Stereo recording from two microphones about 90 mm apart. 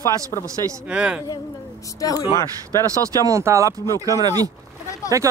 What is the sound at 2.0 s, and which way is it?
Speech, 40° left (ahead or behind).